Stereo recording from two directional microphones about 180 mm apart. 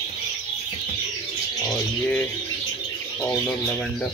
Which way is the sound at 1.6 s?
5° left (ahead or behind).